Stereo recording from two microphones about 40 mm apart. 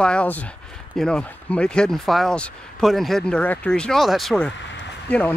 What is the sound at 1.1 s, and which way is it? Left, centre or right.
Speech, left.